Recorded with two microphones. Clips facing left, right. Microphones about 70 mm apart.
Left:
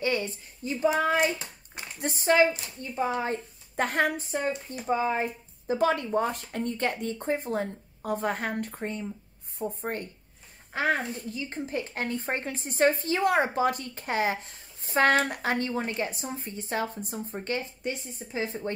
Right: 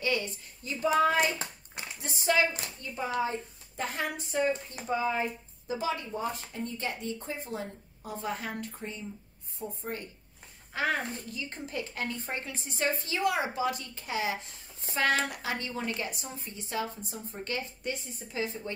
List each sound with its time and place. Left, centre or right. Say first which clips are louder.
0.0 s speech: left 3 dB; left
2.0 s speech: left 5 dB; left
3.2 s speech: left 1 dB; left
4.2 s speech: right 1 dB; left
5.8 s speech: left 8 dB; left
10.7 s speech: left 3 dB; left